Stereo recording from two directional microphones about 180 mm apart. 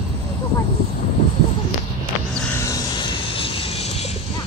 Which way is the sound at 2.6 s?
20° left (ahead or behind).